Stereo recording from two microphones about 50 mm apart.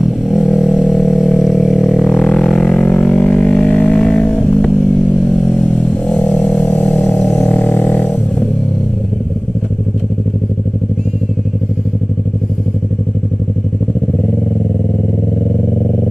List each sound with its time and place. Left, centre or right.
0.3 s a sound: centre
2.0 s music: centre
2.8 s music: left
3.1 s music: left
6.0 s a sound: centre
7.4 s music: left